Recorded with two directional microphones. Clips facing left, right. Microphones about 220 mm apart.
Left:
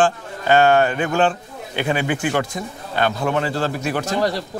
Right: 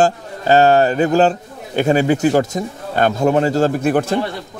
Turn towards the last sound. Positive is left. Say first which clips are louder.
# right 7 dB
turn(degrees=-55)  # may be behind; listen again after turning